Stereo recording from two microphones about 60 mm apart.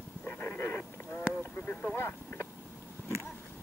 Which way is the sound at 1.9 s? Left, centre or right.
Left.